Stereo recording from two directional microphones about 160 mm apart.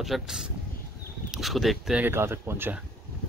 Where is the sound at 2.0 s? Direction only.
15° right (ahead or behind).